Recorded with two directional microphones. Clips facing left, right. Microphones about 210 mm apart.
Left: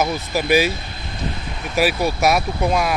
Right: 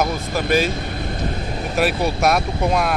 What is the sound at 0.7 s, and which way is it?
Vehicle, 45° right (ahead or behind).